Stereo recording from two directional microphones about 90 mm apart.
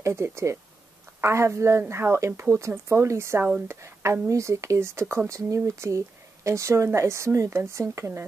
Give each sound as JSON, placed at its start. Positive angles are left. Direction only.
{"t": 0.0, "sound": "speech", "side_deg": -30}